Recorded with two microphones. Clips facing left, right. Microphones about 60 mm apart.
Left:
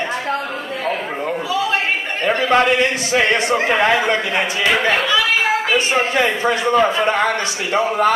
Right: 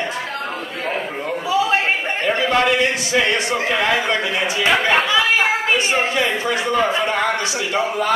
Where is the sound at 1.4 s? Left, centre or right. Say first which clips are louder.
Right 3 dB; right.